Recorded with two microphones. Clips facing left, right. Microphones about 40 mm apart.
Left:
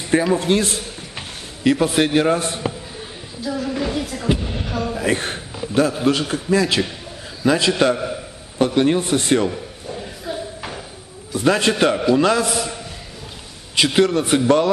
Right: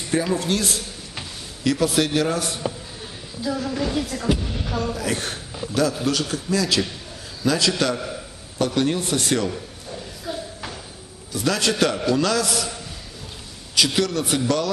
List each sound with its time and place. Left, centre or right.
0.2 s a man's voice: left
3.4 s speech: centre
4.3 s speech: centre
4.9 s a man's voice: left
9.5 s a sound: centre
11.3 s a man's voice: left